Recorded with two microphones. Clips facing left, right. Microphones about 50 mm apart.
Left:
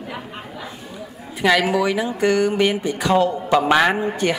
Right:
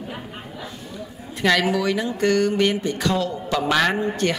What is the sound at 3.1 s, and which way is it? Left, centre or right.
A man's voice, left.